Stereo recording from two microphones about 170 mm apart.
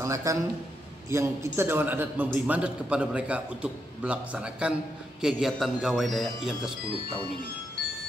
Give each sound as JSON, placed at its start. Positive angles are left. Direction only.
{"t": 0.0, "sound": "a man's voice", "side_deg": -20}